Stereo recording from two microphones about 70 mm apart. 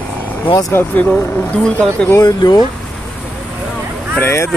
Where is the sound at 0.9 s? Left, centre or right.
Left.